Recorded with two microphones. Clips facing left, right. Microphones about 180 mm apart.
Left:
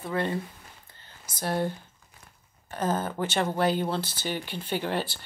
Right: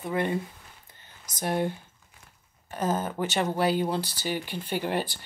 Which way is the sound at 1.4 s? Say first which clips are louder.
Right 1 dB; 15° right (ahead or behind).